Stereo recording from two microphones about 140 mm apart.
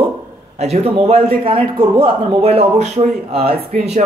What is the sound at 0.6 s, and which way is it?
A man's voice, 50° right (ahead or behind).